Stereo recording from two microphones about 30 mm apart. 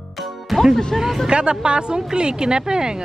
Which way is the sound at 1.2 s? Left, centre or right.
Right.